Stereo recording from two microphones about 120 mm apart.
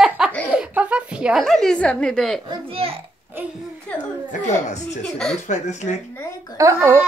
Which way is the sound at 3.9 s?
10° left (ahead or behind).